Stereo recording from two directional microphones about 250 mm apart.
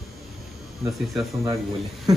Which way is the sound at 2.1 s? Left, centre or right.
Centre.